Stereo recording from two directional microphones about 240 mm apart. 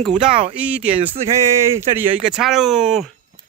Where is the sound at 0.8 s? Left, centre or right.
Right.